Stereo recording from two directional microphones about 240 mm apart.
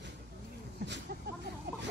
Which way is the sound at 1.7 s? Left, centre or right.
Right.